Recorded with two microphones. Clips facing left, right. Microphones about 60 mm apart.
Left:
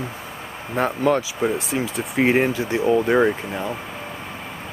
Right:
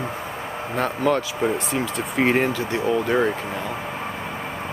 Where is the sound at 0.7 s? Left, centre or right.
Centre.